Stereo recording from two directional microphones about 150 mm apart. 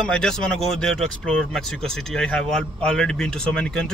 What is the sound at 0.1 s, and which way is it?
Speech, 5° left (ahead or behind).